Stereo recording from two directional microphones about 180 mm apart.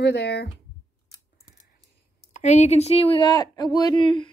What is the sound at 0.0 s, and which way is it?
Speech, 70° left (ahead or behind).